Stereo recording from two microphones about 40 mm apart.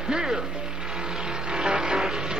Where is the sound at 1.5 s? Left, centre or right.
Centre.